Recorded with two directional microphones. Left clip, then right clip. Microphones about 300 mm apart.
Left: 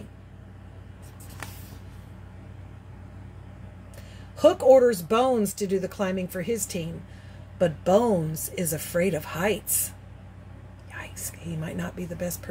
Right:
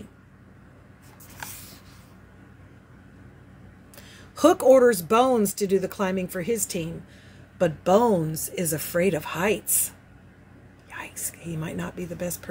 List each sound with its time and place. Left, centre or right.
4.4 s speech: centre
10.9 s whispering: centre
11.4 s speech: centre